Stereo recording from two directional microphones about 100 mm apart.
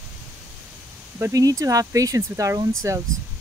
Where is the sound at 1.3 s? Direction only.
35° right (ahead or behind).